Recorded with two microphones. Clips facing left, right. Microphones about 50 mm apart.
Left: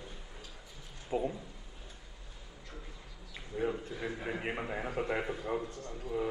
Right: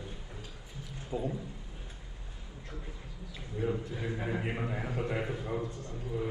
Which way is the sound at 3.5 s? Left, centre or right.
Left.